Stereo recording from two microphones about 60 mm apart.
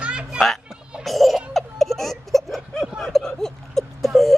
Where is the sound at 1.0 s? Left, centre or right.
Centre.